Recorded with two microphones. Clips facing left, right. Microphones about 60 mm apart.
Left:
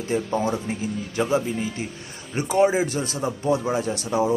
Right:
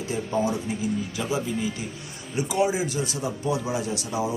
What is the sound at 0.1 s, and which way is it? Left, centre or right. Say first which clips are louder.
Speech: left 2 dB; left.